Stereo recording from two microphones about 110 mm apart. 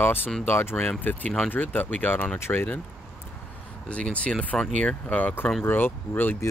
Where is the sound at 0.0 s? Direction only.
20° left (ahead or behind).